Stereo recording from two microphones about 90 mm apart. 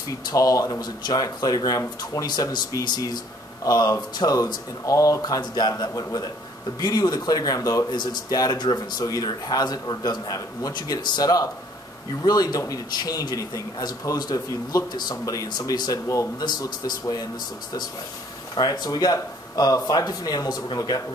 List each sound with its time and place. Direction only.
0.2 s a man's voice: 40° left (ahead or behind)
7.9 s a man's voice: 55° left (ahead or behind)
18.5 s a man's voice: 45° left (ahead or behind)